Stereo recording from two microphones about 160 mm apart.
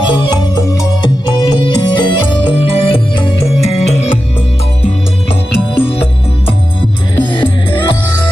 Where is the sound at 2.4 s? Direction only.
35° left (ahead or behind).